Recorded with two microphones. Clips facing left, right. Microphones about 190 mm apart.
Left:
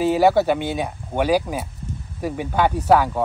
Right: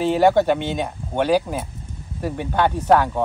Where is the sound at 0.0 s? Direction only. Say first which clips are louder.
Even; 10° left (ahead or behind).